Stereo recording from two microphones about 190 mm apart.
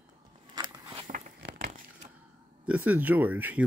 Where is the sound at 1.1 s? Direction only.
45° right (ahead or behind).